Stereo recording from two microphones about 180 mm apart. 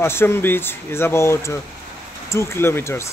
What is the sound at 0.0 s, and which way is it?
Speech, 15° left (ahead or behind).